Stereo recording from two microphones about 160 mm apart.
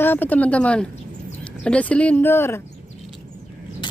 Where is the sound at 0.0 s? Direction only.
10° left (ahead or behind).